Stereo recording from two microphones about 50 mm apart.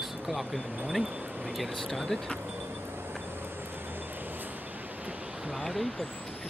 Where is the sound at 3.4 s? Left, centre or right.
Right.